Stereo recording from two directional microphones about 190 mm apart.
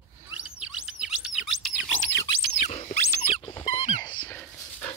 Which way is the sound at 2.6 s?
35° left (ahead or behind).